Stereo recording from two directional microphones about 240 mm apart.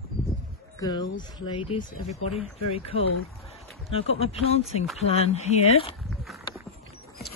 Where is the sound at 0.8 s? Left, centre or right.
Centre.